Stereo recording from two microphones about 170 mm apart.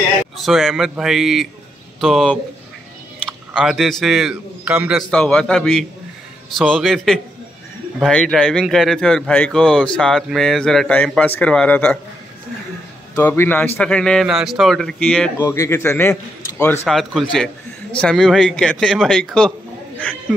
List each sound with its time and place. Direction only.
0.4 s a man's voice: centre (ahead or behind)
5.1 s speech: 5° left (ahead or behind)
13.1 s a man's voice: 10° left (ahead or behind)
15.4 s a man's voice: 20° left (ahead or behind); by 19.5 s 5° left (ahead or behind)